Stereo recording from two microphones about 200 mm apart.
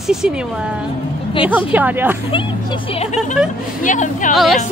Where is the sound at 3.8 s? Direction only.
40° left (ahead or behind).